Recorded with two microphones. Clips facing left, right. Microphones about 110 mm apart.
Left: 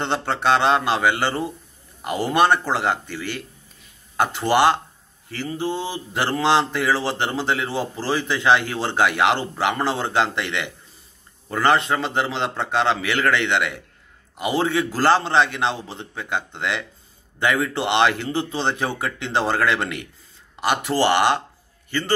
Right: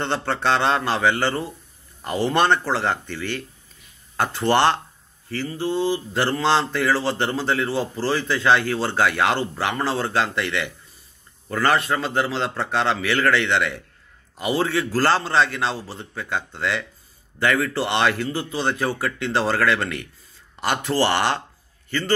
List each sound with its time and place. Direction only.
0.0 s speech: 15° left (ahead or behind)